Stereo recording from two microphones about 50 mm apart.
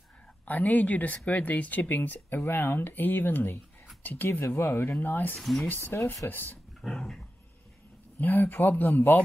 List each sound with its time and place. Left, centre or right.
0.5 s speech: left
5.4 s speech: centre
5.9 s speech: left
6.2 s speech: left
6.8 s dog: centre
8.2 s speech: left